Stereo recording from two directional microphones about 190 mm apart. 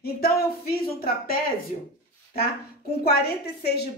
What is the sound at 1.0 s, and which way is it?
Speech, 50° left (ahead or behind).